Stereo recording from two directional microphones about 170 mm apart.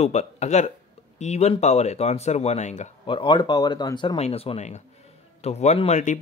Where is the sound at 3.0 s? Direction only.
30° left (ahead or behind).